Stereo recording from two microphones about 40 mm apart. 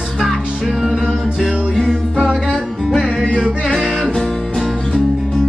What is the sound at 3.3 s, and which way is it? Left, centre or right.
Singing, right.